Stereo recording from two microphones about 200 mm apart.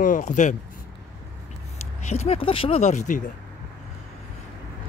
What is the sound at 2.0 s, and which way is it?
Speech, 30° left (ahead or behind).